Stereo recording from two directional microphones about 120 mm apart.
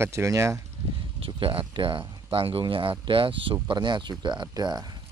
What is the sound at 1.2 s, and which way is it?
Speech, 45° right (ahead or behind).